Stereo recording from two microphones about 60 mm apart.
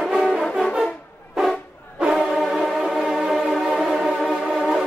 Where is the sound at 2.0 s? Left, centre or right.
Centre.